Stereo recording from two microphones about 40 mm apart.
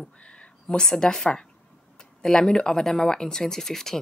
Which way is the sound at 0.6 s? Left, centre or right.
Centre.